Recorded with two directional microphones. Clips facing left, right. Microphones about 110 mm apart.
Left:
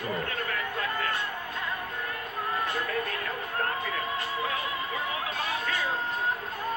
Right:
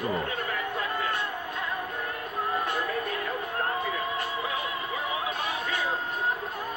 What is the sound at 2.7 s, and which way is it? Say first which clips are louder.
Music: right 1 dB; 10° right (ahead or behind).